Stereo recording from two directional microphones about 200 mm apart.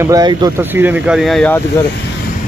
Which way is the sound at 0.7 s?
10° right (ahead or behind).